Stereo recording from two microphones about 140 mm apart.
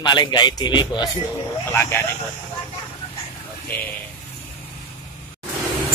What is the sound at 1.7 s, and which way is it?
Speech, 15° left (ahead or behind).